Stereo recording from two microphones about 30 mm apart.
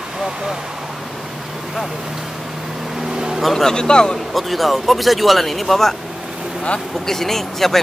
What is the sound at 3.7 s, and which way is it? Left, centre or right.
Speech, left.